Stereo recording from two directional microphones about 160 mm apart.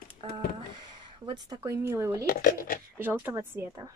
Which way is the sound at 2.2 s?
60° left (ahead or behind).